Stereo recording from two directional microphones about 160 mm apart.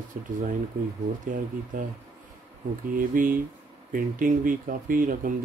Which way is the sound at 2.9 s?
60° right (ahead or behind).